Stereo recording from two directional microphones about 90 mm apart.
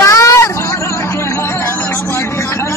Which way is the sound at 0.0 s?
35° left (ahead or behind).